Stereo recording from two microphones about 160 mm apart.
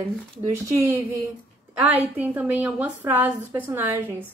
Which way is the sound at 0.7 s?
15° right (ahead or behind).